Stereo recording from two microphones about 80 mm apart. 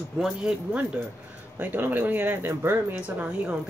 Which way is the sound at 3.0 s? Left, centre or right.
Centre.